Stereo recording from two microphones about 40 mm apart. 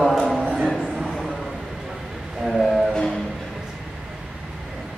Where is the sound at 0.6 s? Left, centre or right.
Centre.